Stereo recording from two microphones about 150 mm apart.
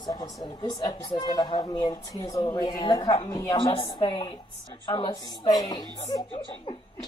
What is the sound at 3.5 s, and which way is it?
A woman's voice, 35° left (ahead or behind).